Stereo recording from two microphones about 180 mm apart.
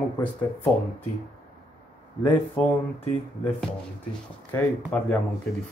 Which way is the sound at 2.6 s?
5° left (ahead or behind).